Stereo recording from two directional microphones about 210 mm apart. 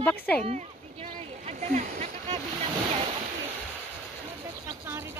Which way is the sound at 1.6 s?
35° right (ahead or behind).